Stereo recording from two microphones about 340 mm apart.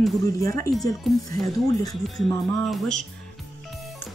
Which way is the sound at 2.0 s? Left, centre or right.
Centre.